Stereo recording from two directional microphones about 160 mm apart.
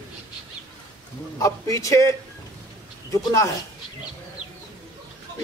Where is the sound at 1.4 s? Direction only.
20° left (ahead or behind).